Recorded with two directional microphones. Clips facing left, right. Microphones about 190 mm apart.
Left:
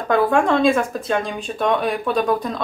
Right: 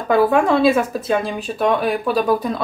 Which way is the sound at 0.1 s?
5° right (ahead or behind).